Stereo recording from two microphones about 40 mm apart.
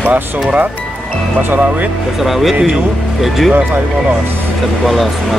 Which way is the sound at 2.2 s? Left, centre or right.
Centre.